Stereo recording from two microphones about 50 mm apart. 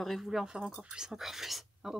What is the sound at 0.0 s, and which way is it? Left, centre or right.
Speech, centre.